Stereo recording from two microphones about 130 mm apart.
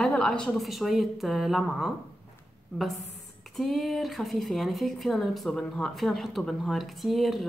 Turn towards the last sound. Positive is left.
turn(degrees=0)  # may be behind; listen again after turning